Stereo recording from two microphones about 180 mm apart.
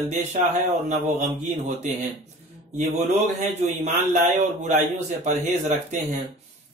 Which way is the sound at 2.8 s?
45° right (ahead or behind).